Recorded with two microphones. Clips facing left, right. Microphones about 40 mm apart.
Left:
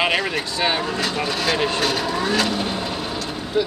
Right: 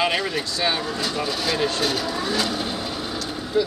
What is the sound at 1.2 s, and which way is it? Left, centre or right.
Speech, left.